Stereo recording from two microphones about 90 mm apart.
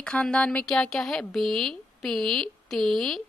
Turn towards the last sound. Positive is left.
turn(degrees=5)  # may be behind; listen again after turning